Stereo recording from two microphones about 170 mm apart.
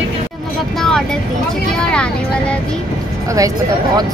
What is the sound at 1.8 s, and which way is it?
Speech, 5° left (ahead or behind).